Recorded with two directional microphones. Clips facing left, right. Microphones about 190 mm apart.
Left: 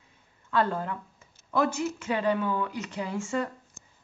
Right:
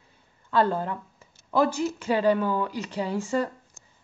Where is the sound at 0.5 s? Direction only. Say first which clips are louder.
Right 3 dB; 30° right (ahead or behind).